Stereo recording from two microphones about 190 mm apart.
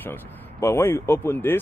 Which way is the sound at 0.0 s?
15° left (ahead or behind).